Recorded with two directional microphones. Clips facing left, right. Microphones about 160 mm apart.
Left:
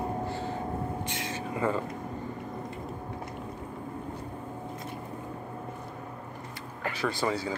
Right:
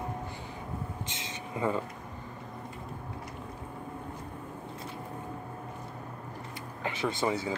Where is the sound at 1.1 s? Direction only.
20° right (ahead or behind).